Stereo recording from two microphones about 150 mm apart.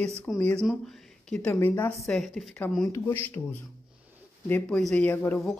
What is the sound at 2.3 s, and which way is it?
A woman's voice, 5° left (ahead or behind).